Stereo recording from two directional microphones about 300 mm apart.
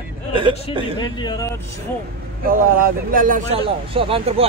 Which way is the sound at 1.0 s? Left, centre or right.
Centre.